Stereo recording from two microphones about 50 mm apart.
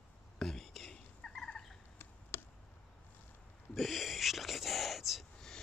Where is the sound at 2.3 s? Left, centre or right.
Left.